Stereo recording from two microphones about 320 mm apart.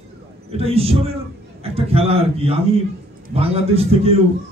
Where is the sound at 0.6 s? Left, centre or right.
Centre.